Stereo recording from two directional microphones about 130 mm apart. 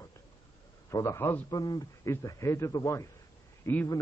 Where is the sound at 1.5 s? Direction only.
30° left (ahead or behind).